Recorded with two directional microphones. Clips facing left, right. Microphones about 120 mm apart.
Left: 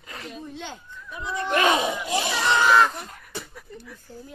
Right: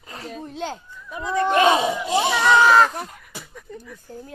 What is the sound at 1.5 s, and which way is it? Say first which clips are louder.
Speech: right 3 dB; 25° right (ahead or behind).